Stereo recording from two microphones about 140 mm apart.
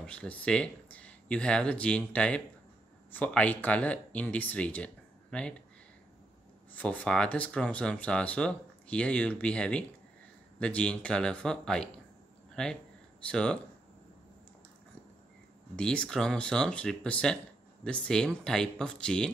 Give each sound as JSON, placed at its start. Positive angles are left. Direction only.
{"t": 0.0, "sound": "speech", "side_deg": 10}
{"t": 6.7, "sound": "speech", "side_deg": 10}
{"t": 15.7, "sound": "speech", "side_deg": 5}